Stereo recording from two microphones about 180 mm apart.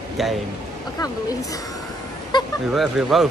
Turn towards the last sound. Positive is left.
turn(degrees=0)  # may be behind; listen again after turning